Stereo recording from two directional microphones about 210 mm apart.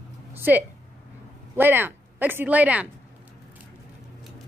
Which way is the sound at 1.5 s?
10° right (ahead or behind).